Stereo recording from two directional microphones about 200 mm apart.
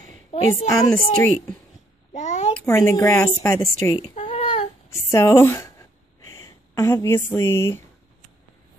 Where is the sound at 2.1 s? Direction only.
35° left (ahead or behind).